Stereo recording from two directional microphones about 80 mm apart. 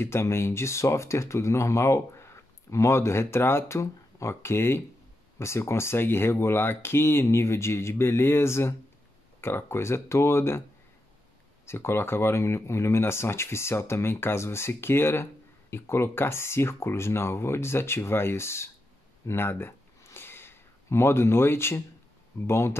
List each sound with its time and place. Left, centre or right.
0.0 s speech: left
11.6 s speech: left
19.2 s a sound: left
22.5 s speech: left